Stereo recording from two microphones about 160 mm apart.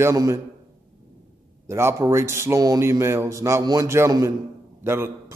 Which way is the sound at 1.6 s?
15° right (ahead or behind).